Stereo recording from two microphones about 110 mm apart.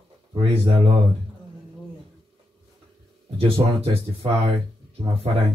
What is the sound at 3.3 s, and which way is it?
Speech, 55° right (ahead or behind).